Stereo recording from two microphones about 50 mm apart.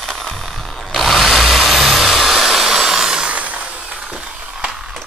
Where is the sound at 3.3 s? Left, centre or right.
Right.